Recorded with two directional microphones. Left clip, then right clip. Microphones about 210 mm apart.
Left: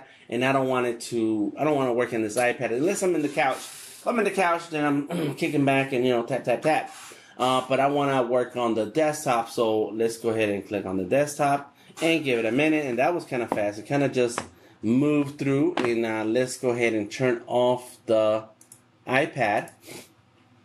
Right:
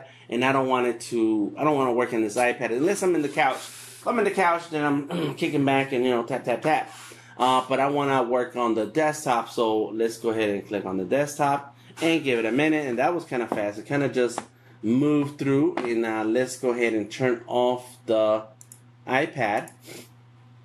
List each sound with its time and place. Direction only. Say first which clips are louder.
0.3 s speech: right 1 dB; 10° right (ahead or behind)